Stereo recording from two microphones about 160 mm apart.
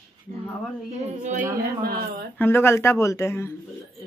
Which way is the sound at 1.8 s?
70° right (ahead or behind).